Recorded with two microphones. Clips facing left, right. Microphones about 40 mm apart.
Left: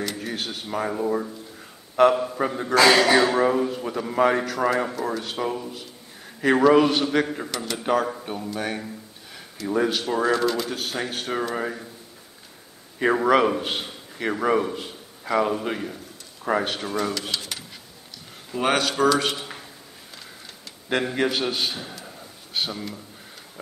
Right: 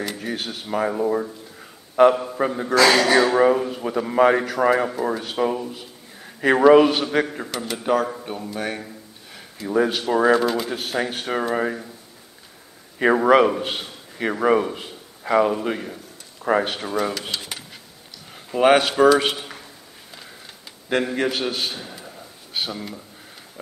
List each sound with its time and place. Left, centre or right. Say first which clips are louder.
0.0 s speech: right 1 dB; centre
2.8 s a man's voice: right 1 dB; centre
3.3 s speech: right 3 dB; centre
13.0 s a man's voice: right 3 dB; centre
20.9 s a man's voice: right 1 dB; centre
22.0 s a sound: right 1 dB; centre